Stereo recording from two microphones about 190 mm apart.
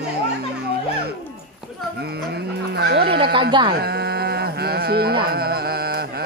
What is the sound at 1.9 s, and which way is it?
Speech, 60° right (ahead or behind).